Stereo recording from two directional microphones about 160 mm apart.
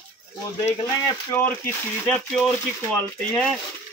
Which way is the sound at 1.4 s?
10° left (ahead or behind).